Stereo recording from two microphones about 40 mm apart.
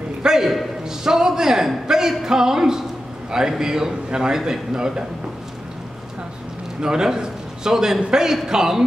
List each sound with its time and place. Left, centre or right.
0.2 s a man's voice: centre
6.8 s a man's voice: centre